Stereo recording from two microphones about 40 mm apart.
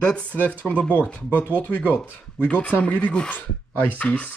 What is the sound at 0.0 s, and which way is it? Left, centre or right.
Speech, left.